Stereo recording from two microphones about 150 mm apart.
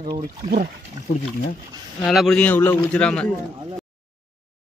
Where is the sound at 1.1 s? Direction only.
70° left (ahead or behind).